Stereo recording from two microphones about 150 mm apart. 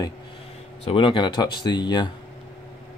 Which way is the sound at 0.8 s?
35° left (ahead or behind).